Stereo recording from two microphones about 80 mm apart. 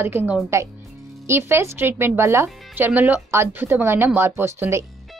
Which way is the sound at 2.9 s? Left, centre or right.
Right.